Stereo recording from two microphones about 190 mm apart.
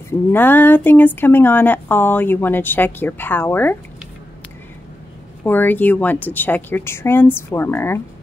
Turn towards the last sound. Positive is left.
turn(degrees=10)  # may be behind; listen again after turning